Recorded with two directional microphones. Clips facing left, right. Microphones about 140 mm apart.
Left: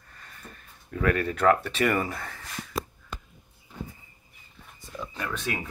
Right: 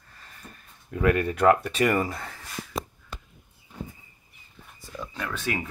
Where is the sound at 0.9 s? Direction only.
15° right (ahead or behind).